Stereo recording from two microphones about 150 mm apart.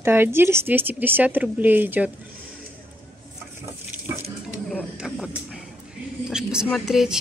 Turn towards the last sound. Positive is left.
turn(degrees=-5)  # may be behind; listen again after turning